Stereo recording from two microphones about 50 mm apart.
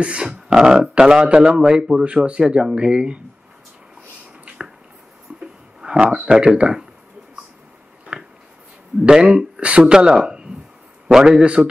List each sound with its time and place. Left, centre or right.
0.0 s speech: right
4.5 s squish: right
5.3 s a sound: right
5.8 s speech: centre
8.1 s a sound: right
9.0 s speech: centre